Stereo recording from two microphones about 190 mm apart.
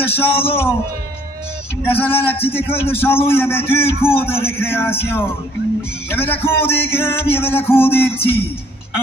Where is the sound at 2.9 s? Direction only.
10° left (ahead or behind).